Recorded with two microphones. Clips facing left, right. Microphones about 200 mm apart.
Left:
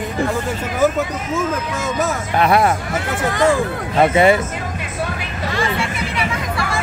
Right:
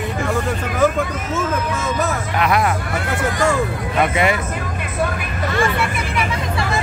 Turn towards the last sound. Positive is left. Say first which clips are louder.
# right 1 dB
turn(degrees=-55)  # may be behind; listen again after turning